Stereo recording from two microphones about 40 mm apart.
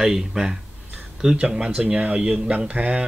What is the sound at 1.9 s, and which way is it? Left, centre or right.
Speech, right.